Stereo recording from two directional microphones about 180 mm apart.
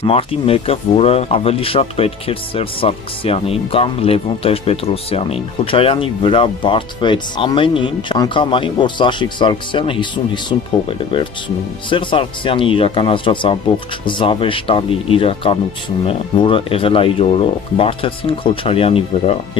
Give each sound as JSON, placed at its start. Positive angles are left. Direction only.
{"t": 0.0, "sound": "speech", "side_deg": 30}